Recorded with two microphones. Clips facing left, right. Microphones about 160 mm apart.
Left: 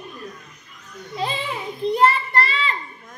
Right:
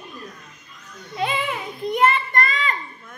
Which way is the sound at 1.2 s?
30° left (ahead or behind).